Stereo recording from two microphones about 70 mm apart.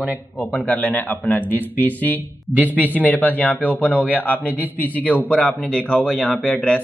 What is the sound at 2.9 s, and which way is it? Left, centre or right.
Speech, left.